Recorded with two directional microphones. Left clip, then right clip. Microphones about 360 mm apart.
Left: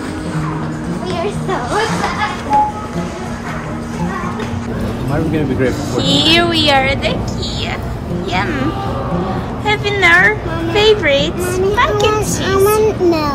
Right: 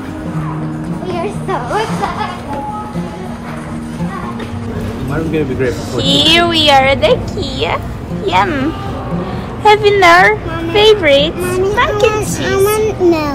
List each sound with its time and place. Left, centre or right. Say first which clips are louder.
5.3 s a woman's voice: right 3 dB; centre
8.3 s a woman's voice: right 6 dB; centre
9.7 s a woman's voice: right 5 dB; centre
12.4 s a child's voice: left 1 dB; centre